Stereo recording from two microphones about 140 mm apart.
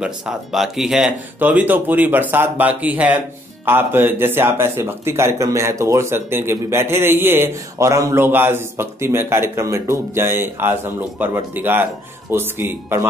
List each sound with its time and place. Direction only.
0.0 s speech: 5° right (ahead or behind)